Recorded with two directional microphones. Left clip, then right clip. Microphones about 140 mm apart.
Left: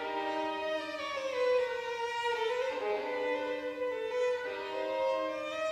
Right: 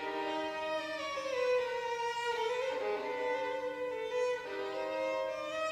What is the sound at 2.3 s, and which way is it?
Violin, 30° right (ahead or behind).